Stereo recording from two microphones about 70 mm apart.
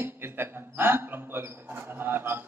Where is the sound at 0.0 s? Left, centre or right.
Right.